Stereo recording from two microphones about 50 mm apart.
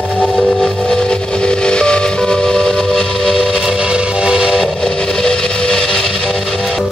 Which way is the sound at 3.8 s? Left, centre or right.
Centre.